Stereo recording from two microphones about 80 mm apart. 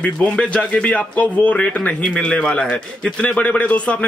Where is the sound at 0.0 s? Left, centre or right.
Centre.